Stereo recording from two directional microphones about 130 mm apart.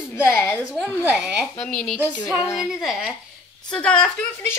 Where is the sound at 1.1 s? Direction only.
5° right (ahead or behind).